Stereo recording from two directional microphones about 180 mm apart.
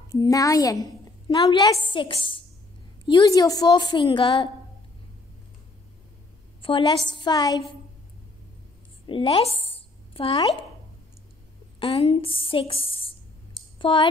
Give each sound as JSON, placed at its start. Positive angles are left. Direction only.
{"t": 0.1, "sound": "a woman's voice", "side_deg": 20}
{"t": 6.6, "sound": "a woman's voice", "side_deg": 30}
{"t": 9.0, "sound": "a woman's voice", "side_deg": 30}
{"t": 11.8, "sound": "a woman's voice", "side_deg": 35}